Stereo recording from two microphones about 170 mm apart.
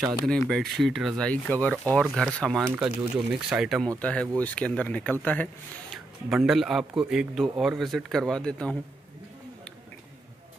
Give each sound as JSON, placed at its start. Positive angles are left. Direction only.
{"t": 0.3, "sound": "speech", "side_deg": 0}
{"t": 6.3, "sound": "speech", "side_deg": 0}